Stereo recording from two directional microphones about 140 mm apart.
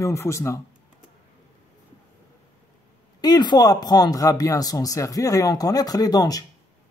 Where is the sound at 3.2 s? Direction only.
30° left (ahead or behind).